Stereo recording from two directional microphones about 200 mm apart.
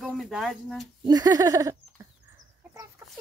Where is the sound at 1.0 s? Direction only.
20° right (ahead or behind).